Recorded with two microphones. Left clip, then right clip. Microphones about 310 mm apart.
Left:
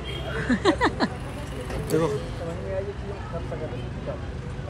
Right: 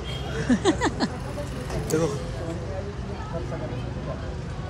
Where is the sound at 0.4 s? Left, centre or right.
Centre.